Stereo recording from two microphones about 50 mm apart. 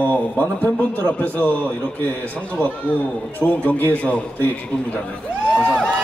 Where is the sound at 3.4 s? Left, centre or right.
Left.